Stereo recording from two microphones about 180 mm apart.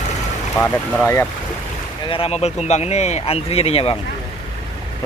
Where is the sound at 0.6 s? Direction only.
10° left (ahead or behind).